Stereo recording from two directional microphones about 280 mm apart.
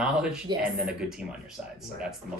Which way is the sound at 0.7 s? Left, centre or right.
Centre.